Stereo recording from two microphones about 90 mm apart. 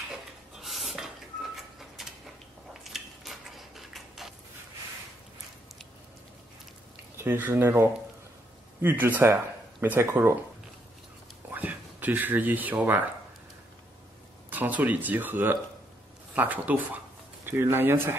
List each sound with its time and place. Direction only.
0.6 s a sound: centre (ahead or behind)
7.2 s speech: 20° right (ahead or behind)
11.5 s speech: 20° right (ahead or behind)
14.5 s speech: 20° right (ahead or behind)